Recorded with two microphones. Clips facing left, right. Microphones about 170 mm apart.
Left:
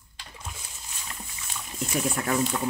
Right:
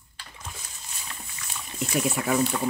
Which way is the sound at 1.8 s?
5° right (ahead or behind).